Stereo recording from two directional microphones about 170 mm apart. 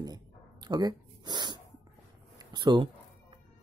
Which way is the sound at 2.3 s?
25° right (ahead or behind).